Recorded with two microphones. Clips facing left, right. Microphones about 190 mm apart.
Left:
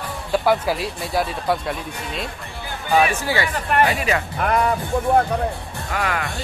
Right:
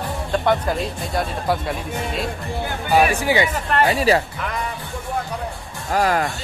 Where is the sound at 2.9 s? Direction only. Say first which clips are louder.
Right 2 dB; 15° right (ahead or behind).